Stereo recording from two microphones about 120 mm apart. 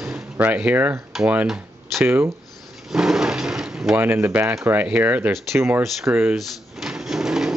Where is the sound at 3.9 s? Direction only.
20° right (ahead or behind).